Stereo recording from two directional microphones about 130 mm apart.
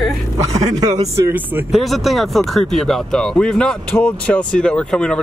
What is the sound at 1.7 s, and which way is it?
Speech, centre (ahead or behind).